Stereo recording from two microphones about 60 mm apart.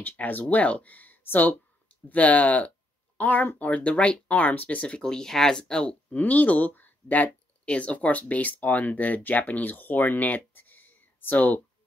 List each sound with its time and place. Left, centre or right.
0.0 s speech: left
6.1 s speech: left